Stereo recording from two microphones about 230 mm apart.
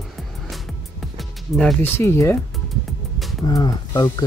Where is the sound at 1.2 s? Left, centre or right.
Centre.